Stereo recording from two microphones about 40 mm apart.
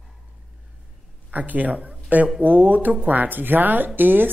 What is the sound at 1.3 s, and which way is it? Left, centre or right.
A woman's voice, right.